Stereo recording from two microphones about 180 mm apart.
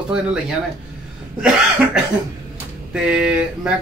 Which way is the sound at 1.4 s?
5° right (ahead or behind).